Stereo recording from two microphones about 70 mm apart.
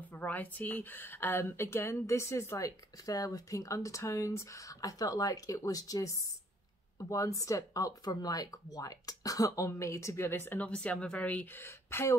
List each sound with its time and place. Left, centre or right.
0.1 s speech: left
10.7 s speech: centre
11.6 s speech: left